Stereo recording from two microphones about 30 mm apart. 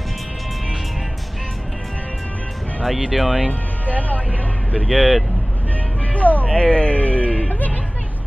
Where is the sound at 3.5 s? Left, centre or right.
Left.